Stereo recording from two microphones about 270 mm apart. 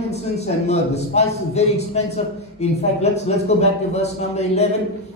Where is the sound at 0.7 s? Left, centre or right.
Left.